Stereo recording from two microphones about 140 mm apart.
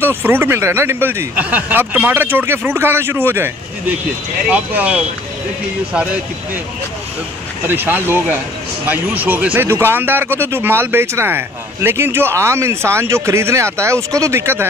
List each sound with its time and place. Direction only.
0.0 s speech: 15° right (ahead or behind)
7.6 s speech: 15° right (ahead or behind)